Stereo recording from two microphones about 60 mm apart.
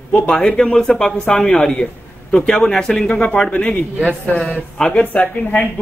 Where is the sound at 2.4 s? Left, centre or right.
Centre.